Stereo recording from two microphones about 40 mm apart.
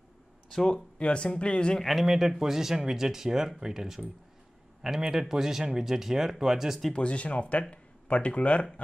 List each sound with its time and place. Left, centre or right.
0.9 s speech: left
1.8 s speech: centre
2.0 s speech: centre
6.9 s speech: left